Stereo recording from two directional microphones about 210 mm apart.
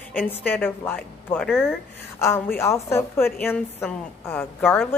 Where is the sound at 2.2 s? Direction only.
10° left (ahead or behind).